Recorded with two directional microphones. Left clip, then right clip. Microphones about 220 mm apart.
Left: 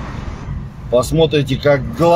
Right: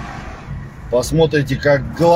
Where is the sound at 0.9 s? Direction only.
15° left (ahead or behind).